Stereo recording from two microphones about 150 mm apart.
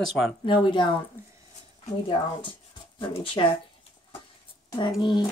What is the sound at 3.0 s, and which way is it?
Speech, 35° left (ahead or behind).